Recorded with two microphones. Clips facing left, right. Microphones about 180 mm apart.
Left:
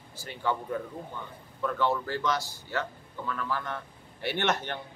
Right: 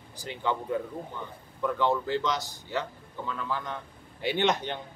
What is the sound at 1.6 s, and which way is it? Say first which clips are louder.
A man's voice: right 2 dB; 15° right (ahead or behind).